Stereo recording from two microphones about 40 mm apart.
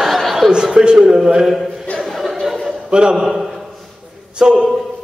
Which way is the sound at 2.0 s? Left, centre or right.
Centre.